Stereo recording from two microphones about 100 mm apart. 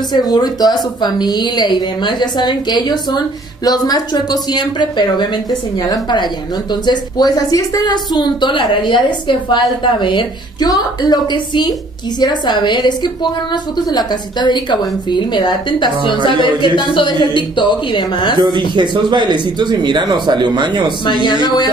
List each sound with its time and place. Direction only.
0.1 s a woman's voice: 40° left (ahead or behind)
18.4 s speech: 50° right (ahead or behind)
21.2 s a woman's voice: 50° left (ahead or behind)